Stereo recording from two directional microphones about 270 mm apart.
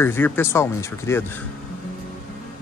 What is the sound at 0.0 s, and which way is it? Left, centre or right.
Speech, centre.